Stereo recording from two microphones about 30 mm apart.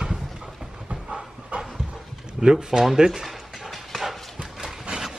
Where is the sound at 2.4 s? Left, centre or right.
Right.